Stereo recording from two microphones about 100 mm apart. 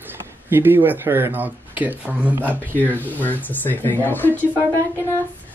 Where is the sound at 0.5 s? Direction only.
20° right (ahead or behind).